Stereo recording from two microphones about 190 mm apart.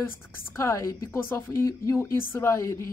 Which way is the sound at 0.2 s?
15° left (ahead or behind).